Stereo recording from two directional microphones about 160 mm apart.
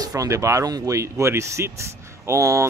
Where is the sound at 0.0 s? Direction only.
20° right (ahead or behind).